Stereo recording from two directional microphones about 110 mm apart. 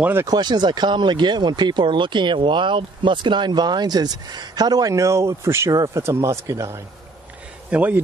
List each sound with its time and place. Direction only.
0.0 s speech: 20° right (ahead or behind)
0.3 s speech: 40° right (ahead or behind)
7.7 s speech: 15° right (ahead or behind)